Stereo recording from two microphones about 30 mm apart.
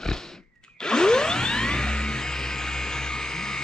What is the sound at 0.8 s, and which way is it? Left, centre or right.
Whoosh, left.